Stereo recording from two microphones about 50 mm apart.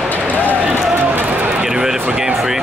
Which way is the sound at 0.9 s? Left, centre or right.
Right.